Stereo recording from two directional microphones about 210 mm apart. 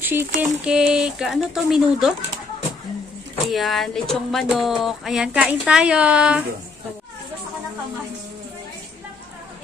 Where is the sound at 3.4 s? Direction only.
Centre (ahead or behind).